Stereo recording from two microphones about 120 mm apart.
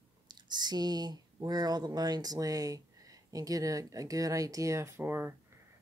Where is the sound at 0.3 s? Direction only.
35° right (ahead or behind).